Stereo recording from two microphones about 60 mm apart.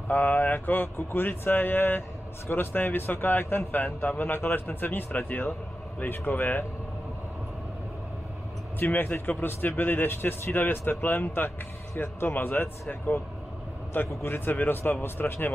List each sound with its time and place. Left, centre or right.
0.1 s speech: left
8.8 s speech: left